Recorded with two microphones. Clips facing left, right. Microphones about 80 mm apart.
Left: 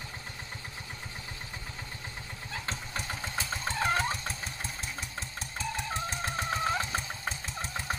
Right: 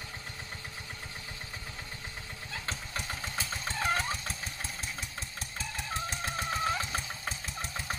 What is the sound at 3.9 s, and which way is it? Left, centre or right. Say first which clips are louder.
Vehicle: left 1 dB; left.